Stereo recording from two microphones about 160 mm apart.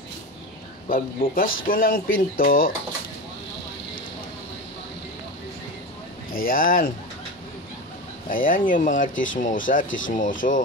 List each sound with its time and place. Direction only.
0.8 s speech: 60° left (ahead or behind)
6.3 s speech: 60° left (ahead or behind)
8.3 s speech: 55° left (ahead or behind)